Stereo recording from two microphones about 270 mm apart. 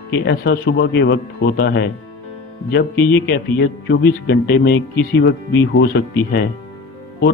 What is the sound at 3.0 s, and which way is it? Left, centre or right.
Speech, left.